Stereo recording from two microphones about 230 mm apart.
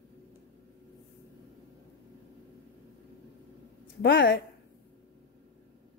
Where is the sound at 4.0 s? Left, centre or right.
Left.